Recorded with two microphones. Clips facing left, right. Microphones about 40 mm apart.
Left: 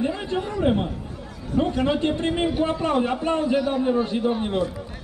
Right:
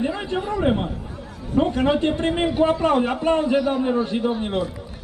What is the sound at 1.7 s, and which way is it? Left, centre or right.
A man's voice, right.